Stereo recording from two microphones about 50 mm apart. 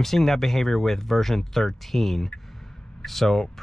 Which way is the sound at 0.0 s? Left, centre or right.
Centre.